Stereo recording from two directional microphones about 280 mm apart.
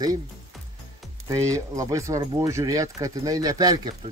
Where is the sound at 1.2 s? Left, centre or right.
Centre.